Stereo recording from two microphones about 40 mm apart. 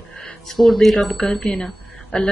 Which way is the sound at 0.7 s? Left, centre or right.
Centre.